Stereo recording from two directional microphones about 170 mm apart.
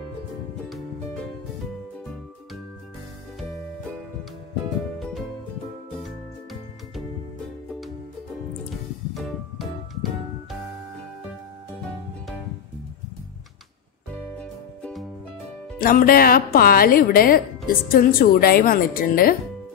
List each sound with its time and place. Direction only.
0.7 s music: centre (ahead or behind)
4.9 s music: centre (ahead or behind)
14.4 s music: 5° left (ahead or behind)
15.8 s a woman's voice: 55° left (ahead or behind)